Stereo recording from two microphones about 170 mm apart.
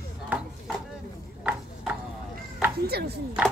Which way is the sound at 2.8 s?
70° right (ahead or behind).